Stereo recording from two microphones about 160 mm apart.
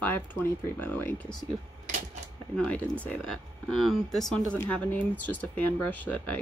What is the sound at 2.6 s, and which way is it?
Speech, 10° left (ahead or behind).